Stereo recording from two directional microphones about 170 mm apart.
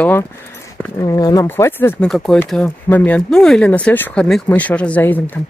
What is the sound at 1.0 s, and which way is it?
Speech, 20° left (ahead or behind).